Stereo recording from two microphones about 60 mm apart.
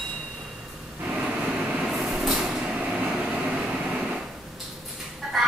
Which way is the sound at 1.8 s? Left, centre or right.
Centre.